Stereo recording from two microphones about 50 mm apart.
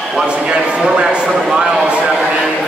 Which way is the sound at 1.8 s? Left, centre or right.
Right.